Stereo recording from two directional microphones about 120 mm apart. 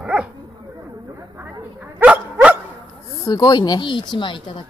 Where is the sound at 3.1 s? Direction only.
35° left (ahead or behind).